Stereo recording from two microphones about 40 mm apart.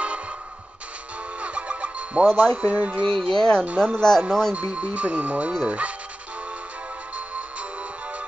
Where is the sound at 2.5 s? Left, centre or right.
Right.